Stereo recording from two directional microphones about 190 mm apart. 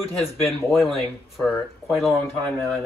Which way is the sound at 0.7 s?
Centre (ahead or behind).